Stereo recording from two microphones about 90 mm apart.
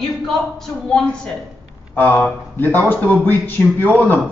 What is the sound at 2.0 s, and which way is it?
A man's voice, 20° left (ahead or behind).